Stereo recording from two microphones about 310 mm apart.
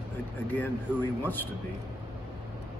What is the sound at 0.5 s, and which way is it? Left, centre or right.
Speech, centre.